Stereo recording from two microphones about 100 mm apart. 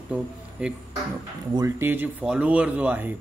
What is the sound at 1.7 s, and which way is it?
Speech, 25° right (ahead or behind).